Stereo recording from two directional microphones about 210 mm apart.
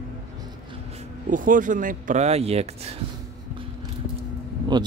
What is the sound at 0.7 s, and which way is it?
Speech, 30° right (ahead or behind).